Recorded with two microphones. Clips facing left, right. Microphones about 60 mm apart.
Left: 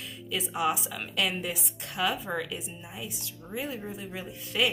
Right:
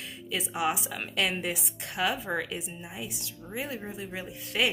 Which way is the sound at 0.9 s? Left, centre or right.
Right.